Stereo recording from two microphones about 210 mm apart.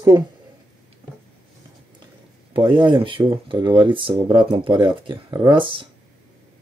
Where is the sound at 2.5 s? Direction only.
20° right (ahead or behind).